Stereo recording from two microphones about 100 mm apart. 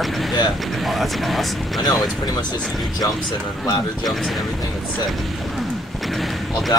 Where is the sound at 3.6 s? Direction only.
40° left (ahead or behind).